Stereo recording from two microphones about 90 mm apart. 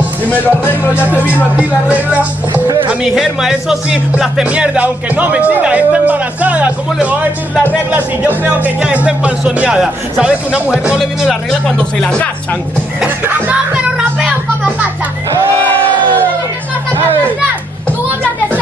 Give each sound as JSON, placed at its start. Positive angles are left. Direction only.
{"t": 0.3, "sound": "music", "side_deg": 20}
{"t": 0.9, "sound": "speech", "side_deg": -15}
{"t": 2.9, "sound": "speech", "side_deg": -5}
{"t": 11.6, "sound": "speech", "side_deg": 10}
{"t": 13.0, "sound": "speech", "side_deg": -15}